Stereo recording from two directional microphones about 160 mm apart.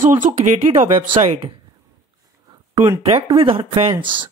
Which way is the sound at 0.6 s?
40° right (ahead or behind).